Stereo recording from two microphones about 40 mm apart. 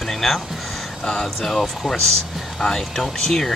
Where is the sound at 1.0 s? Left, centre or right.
Centre.